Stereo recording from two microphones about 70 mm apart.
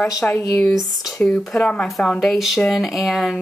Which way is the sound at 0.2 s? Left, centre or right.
Centre.